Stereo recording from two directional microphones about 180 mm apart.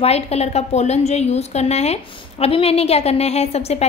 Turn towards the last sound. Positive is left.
turn(degrees=35)  # may be behind; listen again after turning